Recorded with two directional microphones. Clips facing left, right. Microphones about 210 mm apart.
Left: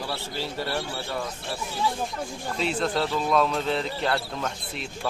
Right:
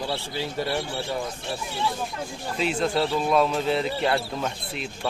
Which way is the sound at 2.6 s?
5° right (ahead or behind).